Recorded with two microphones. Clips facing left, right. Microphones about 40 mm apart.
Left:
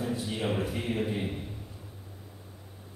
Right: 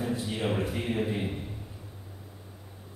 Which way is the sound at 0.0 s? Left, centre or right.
Centre.